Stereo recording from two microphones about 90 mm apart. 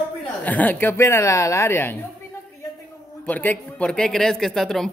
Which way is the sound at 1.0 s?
30° left (ahead or behind).